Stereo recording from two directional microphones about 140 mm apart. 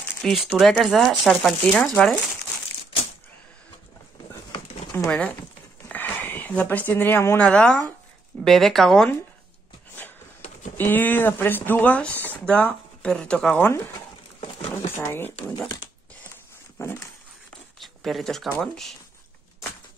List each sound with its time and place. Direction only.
0.2 s speech: centre (ahead or behind)
5.0 s speech: 5° left (ahead or behind)
10.8 s speech: 15° left (ahead or behind)
15.0 s speech: 15° left (ahead or behind)
16.7 s dog: 15° left (ahead or behind)
17.7 s a sound: centre (ahead or behind)
18.6 s speech: centre (ahead or behind)